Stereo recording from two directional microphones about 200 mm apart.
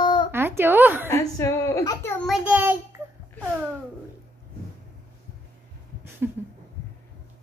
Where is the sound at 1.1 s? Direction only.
15° left (ahead or behind).